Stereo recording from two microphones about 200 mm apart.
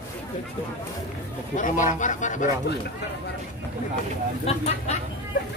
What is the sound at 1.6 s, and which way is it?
Speech, 40° left (ahead or behind).